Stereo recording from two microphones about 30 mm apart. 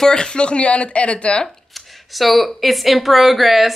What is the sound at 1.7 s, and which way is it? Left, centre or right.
Speech, centre.